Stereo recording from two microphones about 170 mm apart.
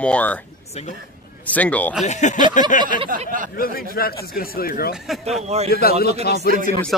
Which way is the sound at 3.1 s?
50° right (ahead or behind).